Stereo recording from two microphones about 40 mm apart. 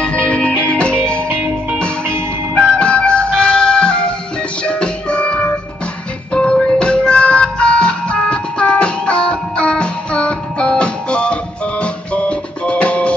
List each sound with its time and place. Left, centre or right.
0.2 s music: left
2.5 s music: left